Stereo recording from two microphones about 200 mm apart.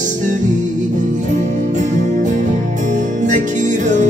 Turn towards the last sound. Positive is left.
turn(degrees=-40)  # may be behind; listen again after turning